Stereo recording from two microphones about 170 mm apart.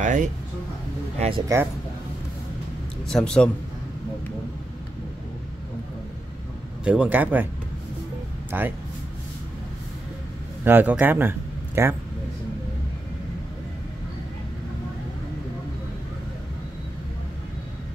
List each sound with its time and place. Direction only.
0.0 s speech: 45° right (ahead or behind)
3.1 s speech: 5° left (ahead or behind)
6.8 s a man's voice: 5° right (ahead or behind)
8.5 s speech: 10° right (ahead or behind)
10.6 s a man's voice: 10° right (ahead or behind)